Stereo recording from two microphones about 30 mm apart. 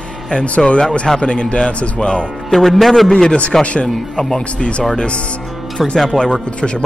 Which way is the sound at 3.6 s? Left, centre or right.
Left.